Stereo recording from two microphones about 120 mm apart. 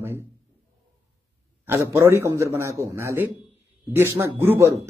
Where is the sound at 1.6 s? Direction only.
20° right (ahead or behind).